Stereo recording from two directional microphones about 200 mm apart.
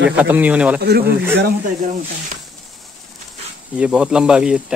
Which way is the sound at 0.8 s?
55° right (ahead or behind).